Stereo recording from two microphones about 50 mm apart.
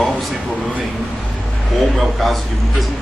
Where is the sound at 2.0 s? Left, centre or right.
Centre.